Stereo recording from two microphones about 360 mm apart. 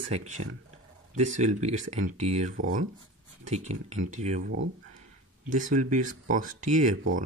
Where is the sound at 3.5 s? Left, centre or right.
Centre.